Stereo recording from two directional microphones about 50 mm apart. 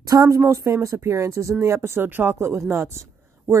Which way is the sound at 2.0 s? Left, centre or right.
Right.